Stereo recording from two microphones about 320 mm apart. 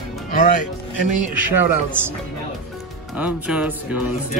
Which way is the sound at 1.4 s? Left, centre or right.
Centre.